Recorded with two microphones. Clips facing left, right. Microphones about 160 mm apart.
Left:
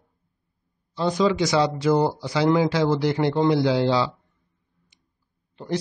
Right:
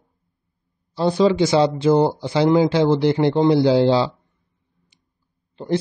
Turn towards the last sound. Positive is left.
turn(degrees=-30)  # may be behind; listen again after turning